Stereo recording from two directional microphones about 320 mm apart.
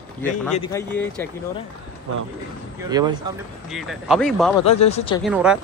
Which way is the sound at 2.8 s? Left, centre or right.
Centre.